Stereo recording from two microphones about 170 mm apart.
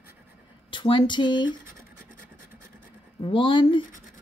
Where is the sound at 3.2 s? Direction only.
30° left (ahead or behind).